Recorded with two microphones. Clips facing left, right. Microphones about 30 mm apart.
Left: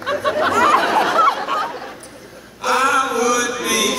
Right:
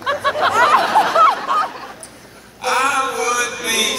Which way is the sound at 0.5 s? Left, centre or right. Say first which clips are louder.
Right 1 dB; right.